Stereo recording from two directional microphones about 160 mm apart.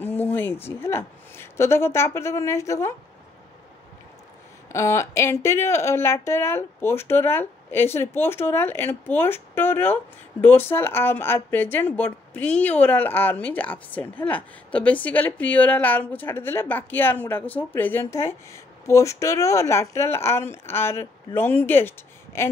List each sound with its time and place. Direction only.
0.0 s speech: 10° left (ahead or behind)
4.7 s a woman's voice: 15° left (ahead or behind)